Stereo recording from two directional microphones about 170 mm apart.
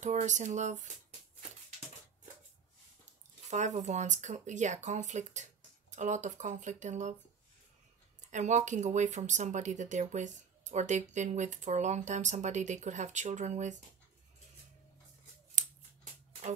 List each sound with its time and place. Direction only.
0.0 s speech: 45° right (ahead or behind)
3.4 s speech: 45° right (ahead or behind)
8.3 s speech: 45° right (ahead or behind)